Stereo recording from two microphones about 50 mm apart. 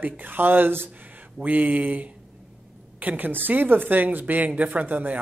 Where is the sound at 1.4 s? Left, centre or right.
Right.